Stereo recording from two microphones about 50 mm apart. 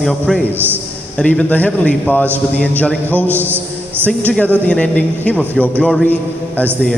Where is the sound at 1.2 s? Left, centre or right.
Left.